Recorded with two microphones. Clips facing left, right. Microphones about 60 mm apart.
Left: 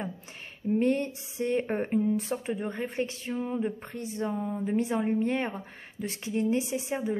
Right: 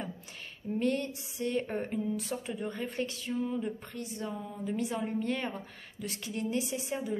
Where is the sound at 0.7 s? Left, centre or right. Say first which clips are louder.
Left 5 dB; left.